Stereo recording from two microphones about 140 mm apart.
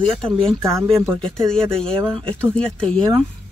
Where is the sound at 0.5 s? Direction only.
20° right (ahead or behind).